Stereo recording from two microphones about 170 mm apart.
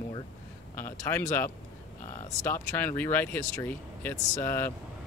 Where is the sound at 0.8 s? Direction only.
15° left (ahead or behind).